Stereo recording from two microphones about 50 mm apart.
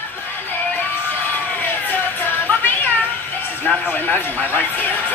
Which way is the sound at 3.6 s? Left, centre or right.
Left.